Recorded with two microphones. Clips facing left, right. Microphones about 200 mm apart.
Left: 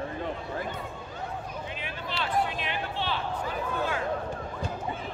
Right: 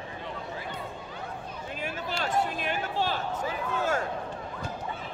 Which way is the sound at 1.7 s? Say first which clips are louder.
Right 2 dB; 45° right (ahead or behind).